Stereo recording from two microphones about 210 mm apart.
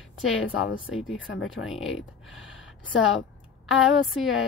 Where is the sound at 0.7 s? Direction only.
65° left (ahead or behind).